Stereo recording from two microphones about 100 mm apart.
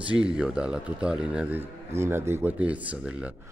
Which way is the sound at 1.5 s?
25° right (ahead or behind).